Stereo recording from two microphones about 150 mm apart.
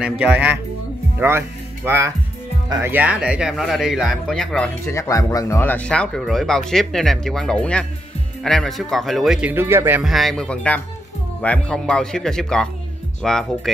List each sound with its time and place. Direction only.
0.2 s speech: 10° right (ahead or behind)
1.9 s speech: 20° right (ahead or behind); by 4.6 s 5° left (ahead or behind)
4.8 s speech: 20° left (ahead or behind); by 9.5 s centre (ahead or behind)
9.5 s speech: 15° right (ahead or behind)
10.0 s speech: centre (ahead or behind)